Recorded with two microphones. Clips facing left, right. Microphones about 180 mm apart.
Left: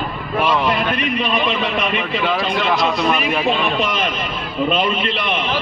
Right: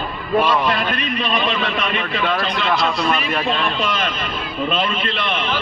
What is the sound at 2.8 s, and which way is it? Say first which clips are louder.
A man's voice: left 2 dB; 20° left (ahead or behind).